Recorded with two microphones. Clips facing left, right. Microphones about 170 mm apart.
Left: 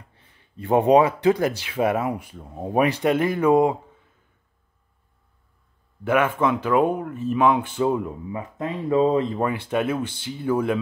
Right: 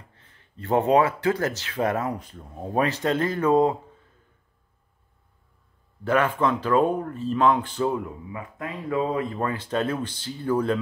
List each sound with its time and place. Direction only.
0.1 s speech: 15° left (ahead or behind)
6.0 s speech: 15° left (ahead or behind)